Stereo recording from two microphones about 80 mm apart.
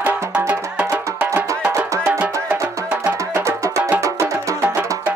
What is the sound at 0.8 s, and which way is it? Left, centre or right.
Music, right.